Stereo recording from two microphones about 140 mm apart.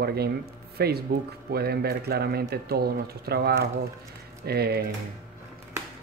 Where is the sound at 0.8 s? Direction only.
90° right.